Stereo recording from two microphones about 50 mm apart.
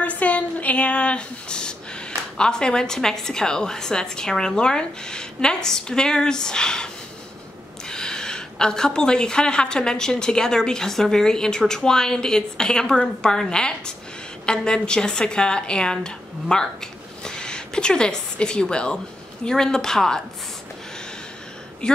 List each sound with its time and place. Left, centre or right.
0.0 s a sound: left
2.3 s a woman's voice: centre
7.9 s a woman's voice: centre
21.8 s speech: left